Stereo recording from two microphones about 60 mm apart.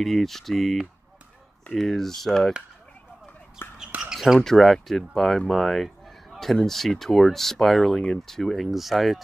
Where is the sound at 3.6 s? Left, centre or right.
Left.